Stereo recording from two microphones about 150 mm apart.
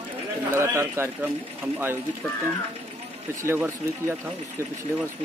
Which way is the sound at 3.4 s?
15° right (ahead or behind).